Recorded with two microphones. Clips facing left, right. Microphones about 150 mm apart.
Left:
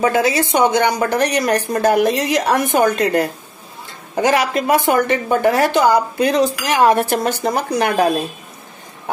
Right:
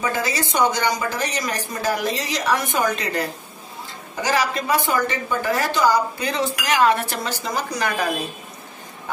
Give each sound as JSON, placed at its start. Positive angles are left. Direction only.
{"t": 0.0, "sound": "a woman's voice", "side_deg": 60}